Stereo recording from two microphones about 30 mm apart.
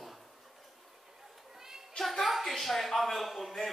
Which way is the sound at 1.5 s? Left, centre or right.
Centre.